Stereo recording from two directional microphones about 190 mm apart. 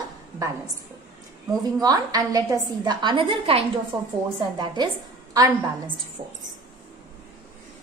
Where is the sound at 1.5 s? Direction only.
20° right (ahead or behind).